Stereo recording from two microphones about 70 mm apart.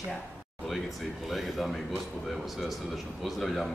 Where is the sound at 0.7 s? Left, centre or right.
Centre.